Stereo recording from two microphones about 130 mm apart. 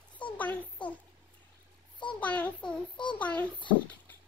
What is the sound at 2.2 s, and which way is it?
Child singing, 10° left (ahead or behind).